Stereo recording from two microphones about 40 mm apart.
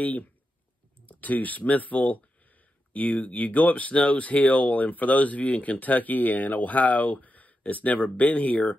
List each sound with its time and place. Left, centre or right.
0.0 s speech: left